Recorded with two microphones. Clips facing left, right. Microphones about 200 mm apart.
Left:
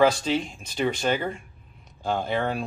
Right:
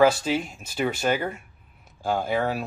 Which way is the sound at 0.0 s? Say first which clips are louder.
Right 1 dB; 5° right (ahead or behind).